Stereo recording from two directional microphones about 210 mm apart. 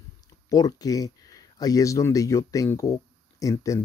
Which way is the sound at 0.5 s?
15° left (ahead or behind).